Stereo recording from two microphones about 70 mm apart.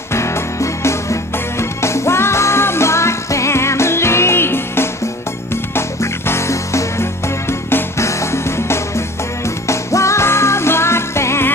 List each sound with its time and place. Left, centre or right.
0.1 s music: left